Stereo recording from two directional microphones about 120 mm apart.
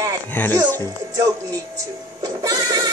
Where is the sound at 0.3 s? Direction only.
15° left (ahead or behind).